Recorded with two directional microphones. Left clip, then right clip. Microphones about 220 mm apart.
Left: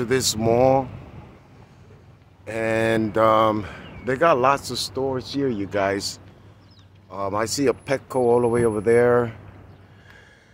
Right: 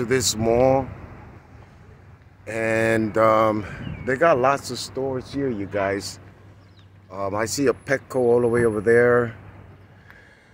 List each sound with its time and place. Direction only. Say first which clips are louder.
0.0 s speech: even; centre (ahead or behind)
2.4 s speech: right 1 dB; 5° right (ahead or behind)